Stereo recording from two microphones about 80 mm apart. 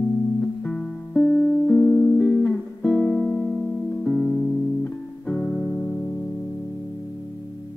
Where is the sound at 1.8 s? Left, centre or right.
Left.